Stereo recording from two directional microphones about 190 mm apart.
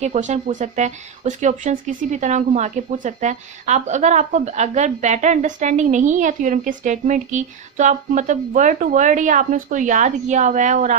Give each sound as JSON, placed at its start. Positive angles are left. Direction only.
{"t": 0.0, "sound": "speech", "side_deg": -35}